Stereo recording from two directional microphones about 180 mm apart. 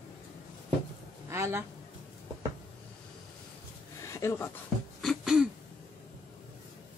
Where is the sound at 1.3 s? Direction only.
15° right (ahead or behind).